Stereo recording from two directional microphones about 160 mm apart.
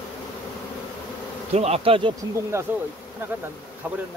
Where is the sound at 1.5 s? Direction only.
40° right (ahead or behind).